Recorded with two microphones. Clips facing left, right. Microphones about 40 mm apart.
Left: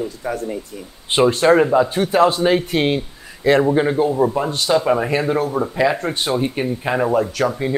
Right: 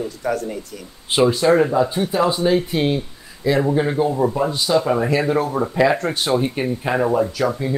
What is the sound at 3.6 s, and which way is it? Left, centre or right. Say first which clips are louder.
Speech: left 1 dB; left.